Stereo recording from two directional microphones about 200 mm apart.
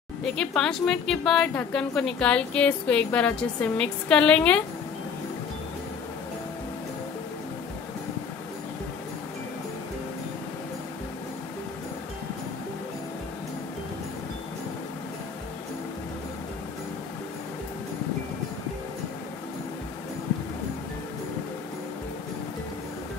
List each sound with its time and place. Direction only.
0.2 s speech: 5° left (ahead or behind)